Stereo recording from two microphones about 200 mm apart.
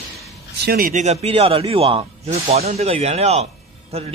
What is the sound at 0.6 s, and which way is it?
Speech, 50° right (ahead or behind).